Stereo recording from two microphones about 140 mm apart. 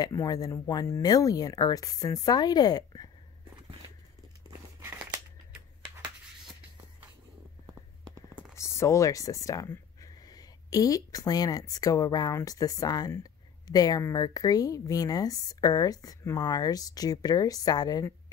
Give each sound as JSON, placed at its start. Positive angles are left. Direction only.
{"t": 0.0, "sound": "a woman's voice", "side_deg": 25}
{"t": 4.5, "sound": "crumpling", "side_deg": -20}
{"t": 8.5, "sound": "a woman's voice", "side_deg": 20}